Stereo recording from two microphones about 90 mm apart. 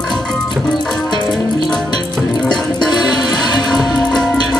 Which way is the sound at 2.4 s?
55° left (ahead or behind).